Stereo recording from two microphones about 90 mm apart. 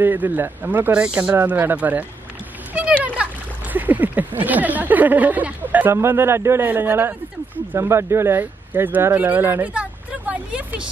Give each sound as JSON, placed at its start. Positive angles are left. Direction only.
{"t": 0.0, "sound": "speech", "side_deg": -20}
{"t": 0.9, "sound": "speech", "side_deg": -10}
{"t": 3.7, "sound": "speech", "side_deg": -20}
{"t": 9.8, "sound": "vehicle", "side_deg": -15}